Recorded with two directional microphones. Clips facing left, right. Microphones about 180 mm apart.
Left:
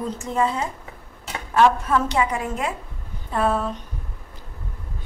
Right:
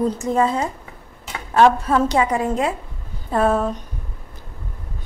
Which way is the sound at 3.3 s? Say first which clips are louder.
Right 4 dB; 45° right (ahead or behind).